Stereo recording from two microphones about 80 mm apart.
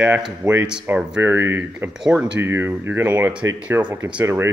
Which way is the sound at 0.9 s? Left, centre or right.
Right.